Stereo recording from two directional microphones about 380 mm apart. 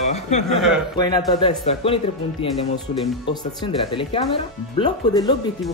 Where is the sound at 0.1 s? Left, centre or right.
Centre.